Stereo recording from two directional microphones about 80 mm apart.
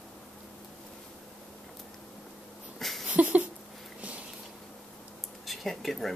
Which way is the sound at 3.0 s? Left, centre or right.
Centre.